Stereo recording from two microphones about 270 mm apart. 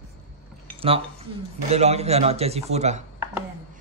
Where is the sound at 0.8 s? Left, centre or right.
Right.